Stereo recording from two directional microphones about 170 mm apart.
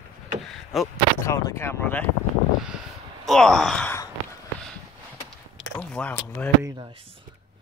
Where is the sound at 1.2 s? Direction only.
20° left (ahead or behind).